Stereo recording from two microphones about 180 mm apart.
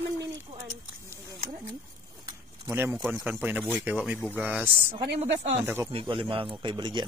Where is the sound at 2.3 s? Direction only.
15° right (ahead or behind).